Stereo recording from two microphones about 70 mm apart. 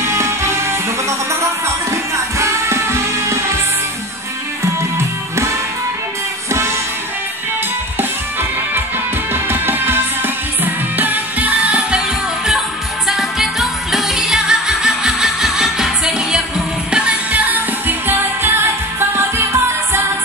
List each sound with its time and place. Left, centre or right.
0.0 s music: right
4.9 s music: right
8.0 s music: right
12.4 s music: centre; by 19.4 s right